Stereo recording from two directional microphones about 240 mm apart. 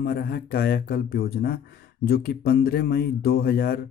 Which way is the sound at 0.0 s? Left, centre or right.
Left.